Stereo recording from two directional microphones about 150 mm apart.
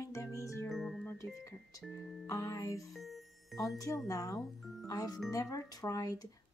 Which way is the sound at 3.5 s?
20° left (ahead or behind).